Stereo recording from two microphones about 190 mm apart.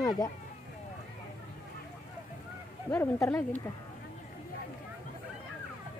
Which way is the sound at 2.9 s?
10° left (ahead or behind).